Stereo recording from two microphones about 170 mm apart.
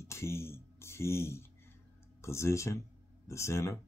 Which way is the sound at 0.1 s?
15° left (ahead or behind).